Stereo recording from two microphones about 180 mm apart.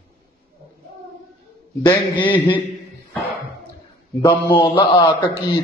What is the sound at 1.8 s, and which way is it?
Speech, 25° left (ahead or behind).